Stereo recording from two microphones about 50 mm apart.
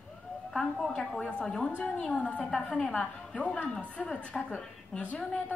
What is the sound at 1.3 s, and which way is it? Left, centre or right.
A woman's voice, centre.